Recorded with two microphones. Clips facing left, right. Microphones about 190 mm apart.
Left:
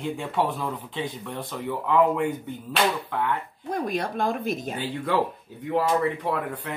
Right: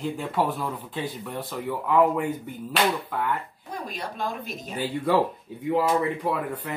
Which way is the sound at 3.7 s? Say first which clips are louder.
Left 7 dB; 55° left (ahead or behind).